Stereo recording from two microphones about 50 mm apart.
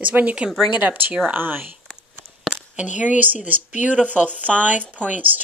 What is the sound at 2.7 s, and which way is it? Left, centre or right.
Speech, right.